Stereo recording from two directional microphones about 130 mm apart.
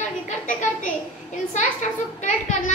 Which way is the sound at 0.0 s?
80° left.